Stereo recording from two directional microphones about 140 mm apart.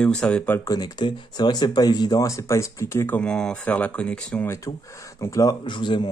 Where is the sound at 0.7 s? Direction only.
30° left (ahead or behind).